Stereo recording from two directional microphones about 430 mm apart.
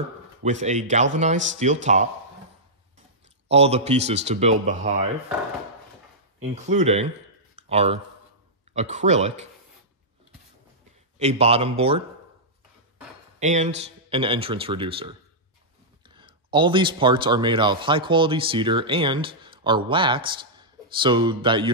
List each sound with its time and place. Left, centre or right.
0.4 s speech: centre
3.4 s speech: centre
6.4 s speech: centre
11.1 s speech: centre
13.4 s speech: centre